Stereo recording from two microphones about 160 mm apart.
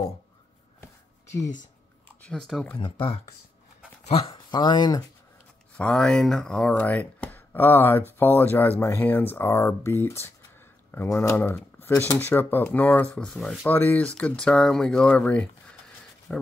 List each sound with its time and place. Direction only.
2.2 s speech: 5° left (ahead or behind)
2.8 s speech: 35° left (ahead or behind)
5.8 s speech: 5° left (ahead or behind)